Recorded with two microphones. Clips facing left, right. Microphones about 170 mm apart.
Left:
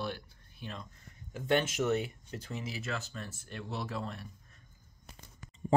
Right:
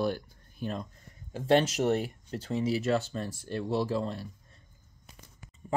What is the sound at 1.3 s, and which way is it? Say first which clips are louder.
Speech: right 6 dB; 30° right (ahead or behind).